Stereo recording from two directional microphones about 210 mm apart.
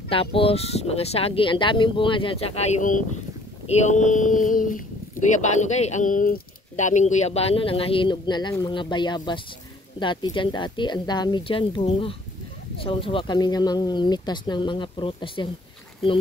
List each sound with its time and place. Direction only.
0.1 s speech: 25° left (ahead or behind)